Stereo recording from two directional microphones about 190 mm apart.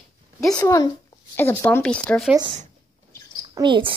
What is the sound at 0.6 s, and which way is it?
Speech, 15° left (ahead or behind).